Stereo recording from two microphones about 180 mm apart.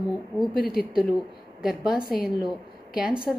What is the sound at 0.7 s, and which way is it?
Speech, 55° left (ahead or behind).